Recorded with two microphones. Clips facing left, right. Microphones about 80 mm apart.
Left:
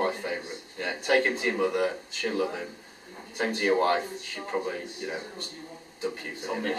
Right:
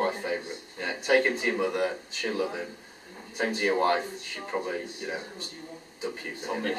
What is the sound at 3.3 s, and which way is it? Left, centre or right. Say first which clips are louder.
Speech: left 1 dB; centre.